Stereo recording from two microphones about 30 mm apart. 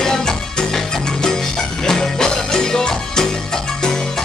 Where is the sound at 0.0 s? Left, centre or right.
Centre.